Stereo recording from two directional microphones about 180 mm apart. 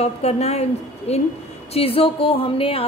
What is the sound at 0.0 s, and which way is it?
A woman's voice, 35° left (ahead or behind).